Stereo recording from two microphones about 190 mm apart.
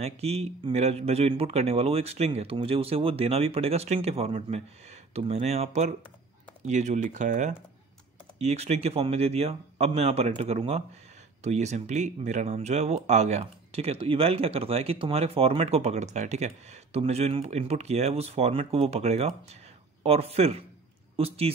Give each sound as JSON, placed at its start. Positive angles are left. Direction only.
{"t": 0.0, "sound": "speech", "side_deg": -35}